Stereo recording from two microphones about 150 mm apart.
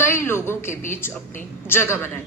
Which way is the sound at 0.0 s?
15° left (ahead or behind).